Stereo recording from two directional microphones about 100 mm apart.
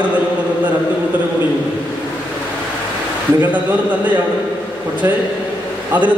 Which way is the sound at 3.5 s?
15° right (ahead or behind).